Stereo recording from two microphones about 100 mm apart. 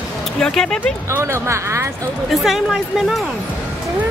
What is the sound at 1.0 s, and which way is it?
Speech, 25° right (ahead or behind).